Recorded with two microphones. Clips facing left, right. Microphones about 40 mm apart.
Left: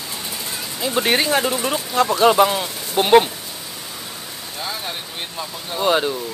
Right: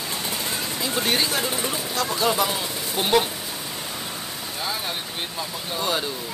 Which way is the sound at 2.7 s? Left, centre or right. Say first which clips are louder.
Right 1 dB; centre.